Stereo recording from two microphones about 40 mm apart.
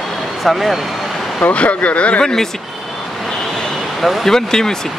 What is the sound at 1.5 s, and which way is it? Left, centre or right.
Speech, left.